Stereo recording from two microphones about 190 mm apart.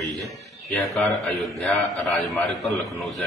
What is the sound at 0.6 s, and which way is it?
Speech, 15° left (ahead or behind).